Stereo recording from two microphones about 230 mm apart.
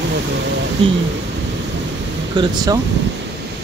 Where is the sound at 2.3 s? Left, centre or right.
Centre.